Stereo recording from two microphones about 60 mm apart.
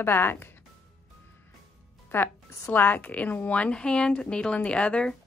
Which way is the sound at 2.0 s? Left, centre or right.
Left.